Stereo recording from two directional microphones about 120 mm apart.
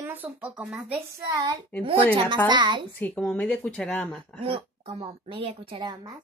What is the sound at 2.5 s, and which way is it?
Speech, 40° right (ahead or behind).